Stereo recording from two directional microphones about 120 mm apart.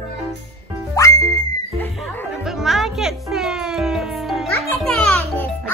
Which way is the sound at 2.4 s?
Centre (ahead or behind).